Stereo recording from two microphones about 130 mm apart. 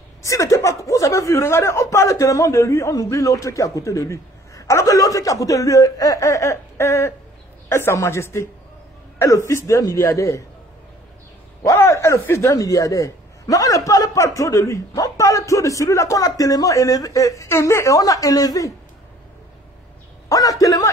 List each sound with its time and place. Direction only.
0.2 s a man's voice: 25° left (ahead or behind)
9.5 s a man's voice: 20° left (ahead or behind)
11.6 s a man's voice: 20° left (ahead or behind)
20.2 s a man's voice: 30° left (ahead or behind)